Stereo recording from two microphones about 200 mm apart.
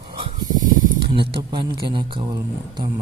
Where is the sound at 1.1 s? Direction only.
25° right (ahead or behind).